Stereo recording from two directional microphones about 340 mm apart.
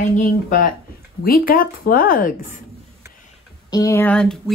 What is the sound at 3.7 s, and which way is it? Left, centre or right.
Speech, centre.